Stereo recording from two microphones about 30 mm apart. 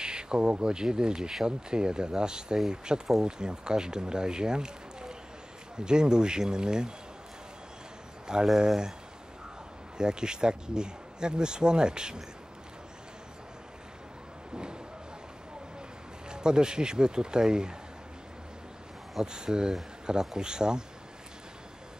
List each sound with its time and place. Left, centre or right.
0.0 s speech: right
8.5 s speech: right
9.9 s speech: right
16.3 s speech: right
19.2 s speech: right